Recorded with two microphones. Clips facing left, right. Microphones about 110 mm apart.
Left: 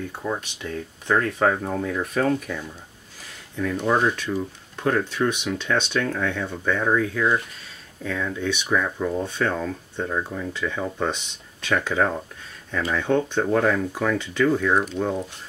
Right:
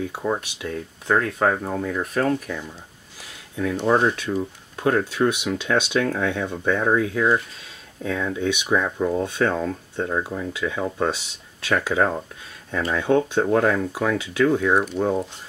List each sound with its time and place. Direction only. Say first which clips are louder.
0.1 s speech: right 3 dB; 15° right (ahead or behind)
3.8 s speech: right 2 dB; 10° right (ahead or behind)